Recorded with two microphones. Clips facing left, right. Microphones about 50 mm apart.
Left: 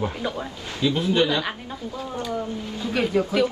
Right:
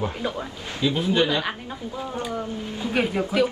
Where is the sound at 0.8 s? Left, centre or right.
Centre.